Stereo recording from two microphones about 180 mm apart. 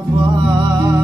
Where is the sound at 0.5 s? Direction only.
20° right (ahead or behind).